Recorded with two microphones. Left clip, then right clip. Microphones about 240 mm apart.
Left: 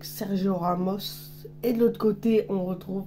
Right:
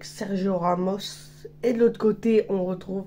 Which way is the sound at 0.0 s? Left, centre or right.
Centre.